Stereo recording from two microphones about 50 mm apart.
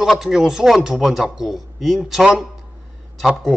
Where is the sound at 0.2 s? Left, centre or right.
Centre.